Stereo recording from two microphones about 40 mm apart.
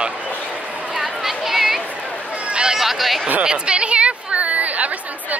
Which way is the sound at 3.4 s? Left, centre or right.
Right.